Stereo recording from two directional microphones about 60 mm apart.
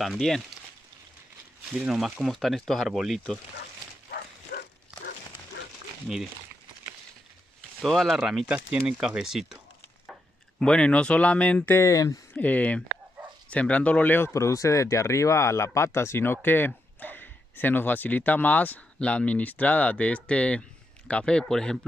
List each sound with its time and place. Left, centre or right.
0.0 s speech: centre
1.7 s speech: centre
2.2 s speech: centre
6.1 s speech: centre
7.8 s speech: centre
10.6 s speech: centre
11.8 s speech: left
12.4 s speech: left
14.3 s speech: left; by 21.7 s centre